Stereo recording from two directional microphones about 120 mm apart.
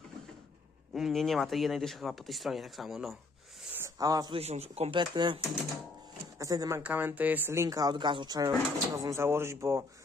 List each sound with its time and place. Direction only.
0.9 s speech: centre (ahead or behind)
3.7 s a sound: 25° right (ahead or behind)
4.3 s a man's voice: 60° right (ahead or behind)
4.9 s speech: 40° right (ahead or behind)
6.3 s speech: 30° right (ahead or behind)
6.8 s speech: 15° right (ahead or behind)